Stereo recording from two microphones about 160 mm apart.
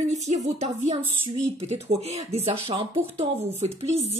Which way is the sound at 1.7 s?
40° right (ahead or behind).